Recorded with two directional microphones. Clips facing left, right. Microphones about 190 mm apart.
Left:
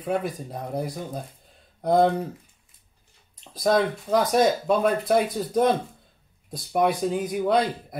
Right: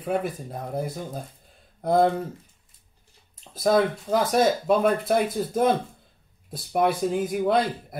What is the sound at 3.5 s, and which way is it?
Speech, 5° right (ahead or behind).